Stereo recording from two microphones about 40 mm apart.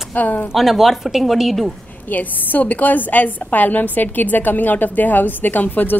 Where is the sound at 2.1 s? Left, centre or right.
Left.